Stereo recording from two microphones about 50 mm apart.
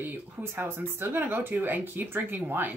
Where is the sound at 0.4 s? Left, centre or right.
Right.